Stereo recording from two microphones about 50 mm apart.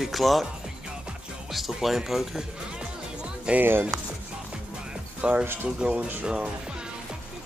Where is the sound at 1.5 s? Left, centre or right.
Centre.